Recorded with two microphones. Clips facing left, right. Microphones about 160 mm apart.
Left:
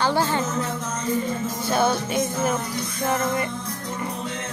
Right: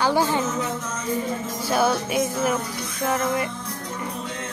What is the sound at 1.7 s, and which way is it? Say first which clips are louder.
Music: right 1 dB; 5° right (ahead or behind).